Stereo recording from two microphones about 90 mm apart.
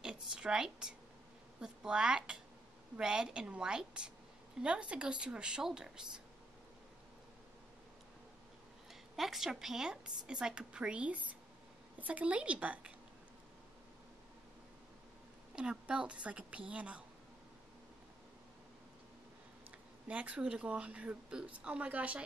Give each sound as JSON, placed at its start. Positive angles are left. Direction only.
{"t": 0.0, "sound": "a sound", "side_deg": -10}
{"t": 1.6, "sound": "a woman's voice", "side_deg": -10}
{"t": 9.1, "sound": "a woman's voice", "side_deg": 0}
{"t": 15.5, "sound": "a woman's voice", "side_deg": -10}
{"t": 20.1, "sound": "a woman's voice", "side_deg": -15}